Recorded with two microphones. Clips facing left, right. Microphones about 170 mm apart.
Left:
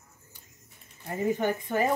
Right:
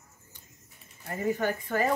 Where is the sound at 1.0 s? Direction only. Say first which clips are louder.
Left 2 dB; 15° left (ahead or behind).